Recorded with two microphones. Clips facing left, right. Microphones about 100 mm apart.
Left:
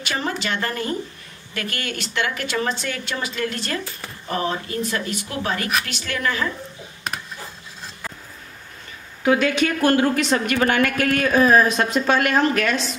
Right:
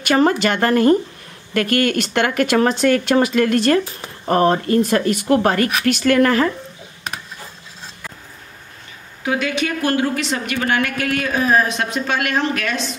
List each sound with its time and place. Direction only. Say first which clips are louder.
0.0 s speech: right 10 dB; 50° right (ahead or behind)
9.2 s a woman's voice: left 2 dB; 40° left (ahead or behind)